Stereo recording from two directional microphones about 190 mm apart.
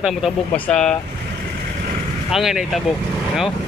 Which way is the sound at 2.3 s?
Centre (ahead or behind).